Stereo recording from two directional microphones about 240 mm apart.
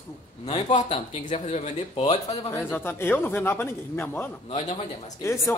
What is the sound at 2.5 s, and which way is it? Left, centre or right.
Speech, centre.